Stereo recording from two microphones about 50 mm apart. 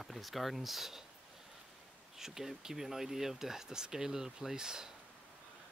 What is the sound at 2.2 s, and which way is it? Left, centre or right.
Speech, centre.